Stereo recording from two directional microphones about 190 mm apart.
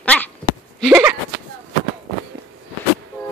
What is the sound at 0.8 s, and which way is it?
Speech, 5° right (ahead or behind).